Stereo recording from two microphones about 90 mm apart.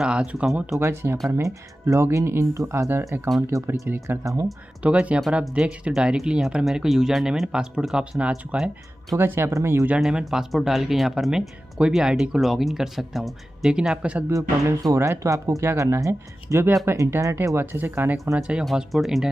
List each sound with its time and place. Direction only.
0.0 s a sound: 10° right (ahead or behind)
0.7 s speech: 30° right (ahead or behind)
4.8 s speech: 15° right (ahead or behind)
9.2 s speech: 25° right (ahead or behind)
9.9 s speech: 5° right (ahead or behind)
14.3 s speech: 40° right (ahead or behind)
18.3 s speech: 5° right (ahead or behind)